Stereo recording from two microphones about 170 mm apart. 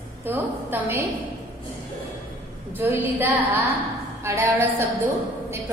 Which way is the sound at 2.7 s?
10° right (ahead or behind).